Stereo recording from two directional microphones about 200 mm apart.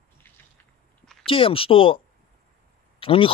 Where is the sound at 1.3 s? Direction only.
25° left (ahead or behind).